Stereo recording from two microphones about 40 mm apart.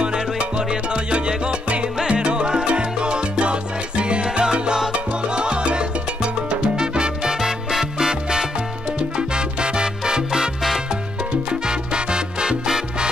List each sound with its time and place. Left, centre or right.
0.0 s salsa music: right
11.6 s salsa music: right